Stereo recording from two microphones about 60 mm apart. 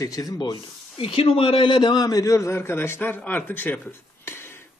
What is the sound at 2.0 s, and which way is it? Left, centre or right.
A man's voice, left.